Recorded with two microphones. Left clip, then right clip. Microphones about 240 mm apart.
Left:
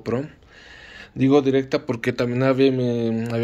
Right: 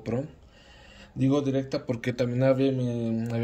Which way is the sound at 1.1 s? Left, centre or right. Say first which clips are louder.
Left 9 dB; centre.